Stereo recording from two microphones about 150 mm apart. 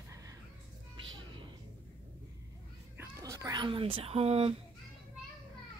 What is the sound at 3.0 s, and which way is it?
Speech, 20° right (ahead or behind).